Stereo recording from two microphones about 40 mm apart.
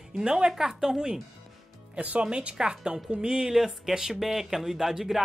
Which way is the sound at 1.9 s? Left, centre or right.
Right.